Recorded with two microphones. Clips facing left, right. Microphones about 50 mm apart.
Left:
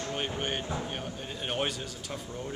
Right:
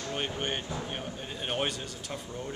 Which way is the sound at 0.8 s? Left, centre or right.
Centre.